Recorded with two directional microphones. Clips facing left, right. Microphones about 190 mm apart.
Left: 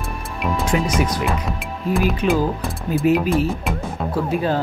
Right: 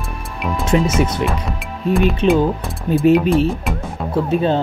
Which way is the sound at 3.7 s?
Centre (ahead or behind).